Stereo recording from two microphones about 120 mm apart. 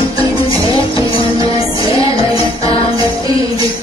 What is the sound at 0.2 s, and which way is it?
Music, 50° left (ahead or behind).